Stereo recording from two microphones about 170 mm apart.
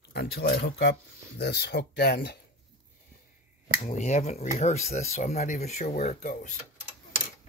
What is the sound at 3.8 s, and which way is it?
Speech, 45° left (ahead or behind).